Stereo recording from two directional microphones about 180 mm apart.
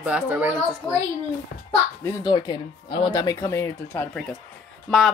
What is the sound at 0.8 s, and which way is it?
Speech, 10° left (ahead or behind).